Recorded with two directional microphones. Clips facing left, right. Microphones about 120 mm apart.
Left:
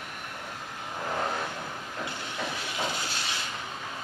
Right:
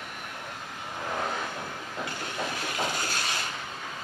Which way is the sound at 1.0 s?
Centre (ahead or behind).